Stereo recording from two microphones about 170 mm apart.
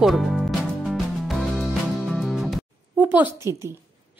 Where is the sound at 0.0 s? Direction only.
Centre (ahead or behind).